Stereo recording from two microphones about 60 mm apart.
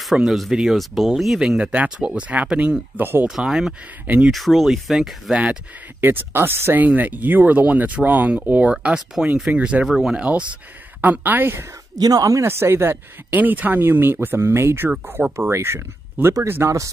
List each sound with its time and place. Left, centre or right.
0.0 s speech: centre
3.0 s speech: right
3.3 s speech: centre
5.3 s speech: right
5.9 s speech: right
6.8 s speech: right
9.8 s speech: centre
10.1 s speech: centre
11.0 s speech: right
12.0 s speech: right
12.4 s speech: right
13.4 s speech: right
16.6 s speech: right